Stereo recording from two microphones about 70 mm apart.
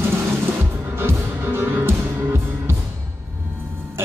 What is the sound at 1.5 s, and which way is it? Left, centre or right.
Music, right.